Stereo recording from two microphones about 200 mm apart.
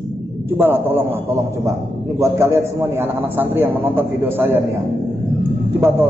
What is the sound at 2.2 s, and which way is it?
A man's voice, 15° right (ahead or behind).